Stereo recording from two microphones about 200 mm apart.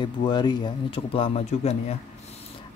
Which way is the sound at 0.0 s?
20° left (ahead or behind).